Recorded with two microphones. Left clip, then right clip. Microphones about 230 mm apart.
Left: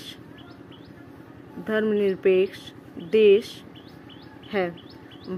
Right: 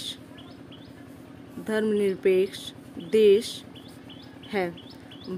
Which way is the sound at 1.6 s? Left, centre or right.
Centre.